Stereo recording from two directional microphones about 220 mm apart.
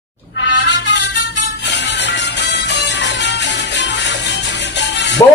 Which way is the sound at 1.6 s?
50° left (ahead or behind).